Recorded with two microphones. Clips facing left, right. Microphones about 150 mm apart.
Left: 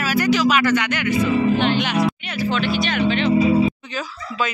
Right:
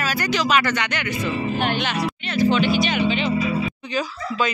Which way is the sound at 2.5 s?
Centre (ahead or behind).